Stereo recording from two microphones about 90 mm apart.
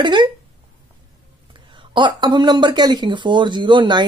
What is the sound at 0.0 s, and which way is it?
Speech, 60° right (ahead or behind).